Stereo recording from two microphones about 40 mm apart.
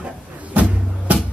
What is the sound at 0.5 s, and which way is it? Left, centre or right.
Music, right.